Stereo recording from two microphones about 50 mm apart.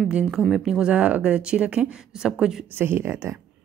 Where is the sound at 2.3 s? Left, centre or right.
Centre.